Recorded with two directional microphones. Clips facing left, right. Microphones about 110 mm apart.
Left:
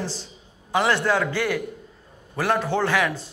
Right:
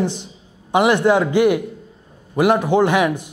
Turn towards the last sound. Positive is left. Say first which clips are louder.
# right 7 dB
turn(degrees=-20)  # may be behind; listen again after turning